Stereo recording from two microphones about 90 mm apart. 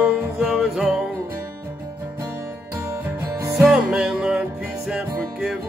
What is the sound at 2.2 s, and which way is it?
Music, 35° right (ahead or behind).